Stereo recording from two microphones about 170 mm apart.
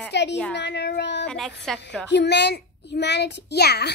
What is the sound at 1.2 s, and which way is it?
Speech, centre (ahead or behind).